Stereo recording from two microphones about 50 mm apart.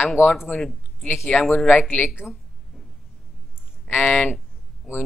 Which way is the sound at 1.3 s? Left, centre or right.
Centre.